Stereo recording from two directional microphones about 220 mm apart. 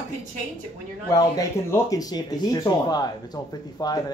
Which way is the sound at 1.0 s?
15° left (ahead or behind).